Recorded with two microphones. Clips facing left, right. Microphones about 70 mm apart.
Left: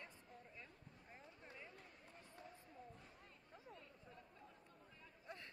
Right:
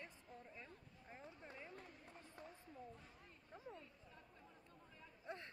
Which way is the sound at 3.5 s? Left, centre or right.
Right.